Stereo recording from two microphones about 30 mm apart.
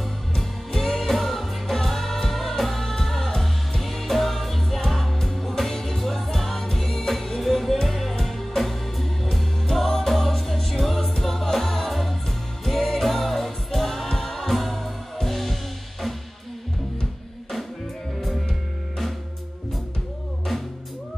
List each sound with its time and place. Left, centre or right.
0.3 s music: centre